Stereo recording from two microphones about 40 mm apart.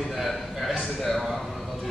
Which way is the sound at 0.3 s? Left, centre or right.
Centre.